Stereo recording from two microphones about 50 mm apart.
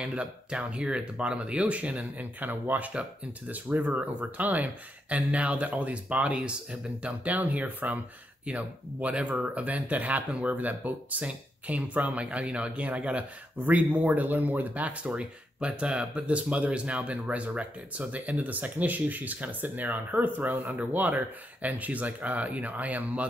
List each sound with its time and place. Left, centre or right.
0.0 s speech: right
2.1 s speech: right; by 7.2 s centre
7.2 s speech: right